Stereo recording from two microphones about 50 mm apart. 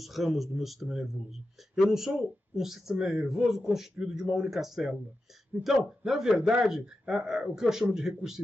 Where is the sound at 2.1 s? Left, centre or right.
Centre.